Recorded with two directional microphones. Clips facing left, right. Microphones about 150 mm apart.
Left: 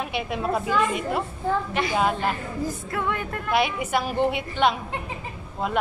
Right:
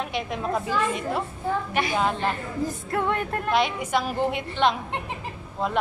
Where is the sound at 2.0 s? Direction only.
10° left (ahead or behind).